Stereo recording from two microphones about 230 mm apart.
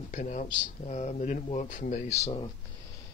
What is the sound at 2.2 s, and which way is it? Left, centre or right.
Speech, left.